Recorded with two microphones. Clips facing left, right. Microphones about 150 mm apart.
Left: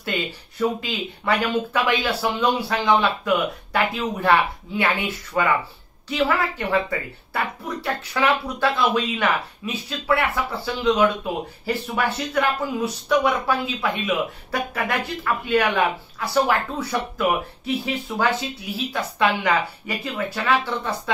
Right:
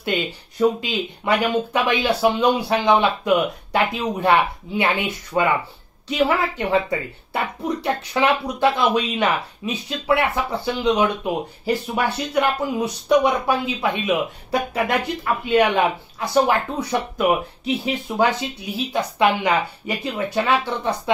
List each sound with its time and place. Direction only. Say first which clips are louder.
0.7 s speech: right 3 dB; 20° right (ahead or behind)